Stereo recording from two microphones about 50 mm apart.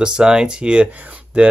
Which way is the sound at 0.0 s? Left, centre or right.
Centre.